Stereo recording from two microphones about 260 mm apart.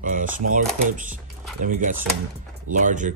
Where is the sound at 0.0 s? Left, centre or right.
Right.